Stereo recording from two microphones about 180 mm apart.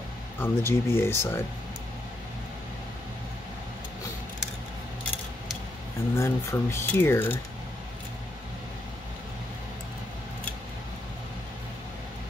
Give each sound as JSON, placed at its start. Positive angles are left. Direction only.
{"t": 0.4, "sound": "speech", "side_deg": 15}
{"t": 6.1, "sound": "speech", "side_deg": 15}